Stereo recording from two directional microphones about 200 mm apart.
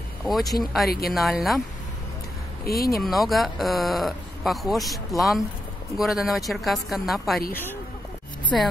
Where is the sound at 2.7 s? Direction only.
50° left (ahead or behind).